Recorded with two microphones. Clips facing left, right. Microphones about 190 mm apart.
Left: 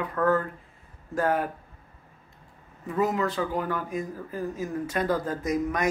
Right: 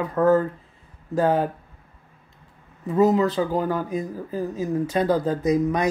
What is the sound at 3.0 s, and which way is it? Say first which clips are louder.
Speech: right 7 dB; 35° right (ahead or behind).